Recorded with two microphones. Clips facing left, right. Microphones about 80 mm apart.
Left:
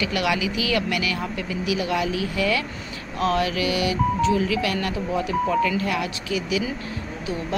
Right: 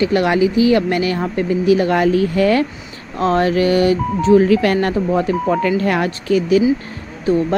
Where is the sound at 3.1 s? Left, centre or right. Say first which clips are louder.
Right 7 dB; right.